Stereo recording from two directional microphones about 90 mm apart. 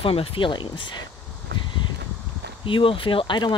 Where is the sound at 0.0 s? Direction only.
90° left; by 0.7 s 65° left (ahead or behind).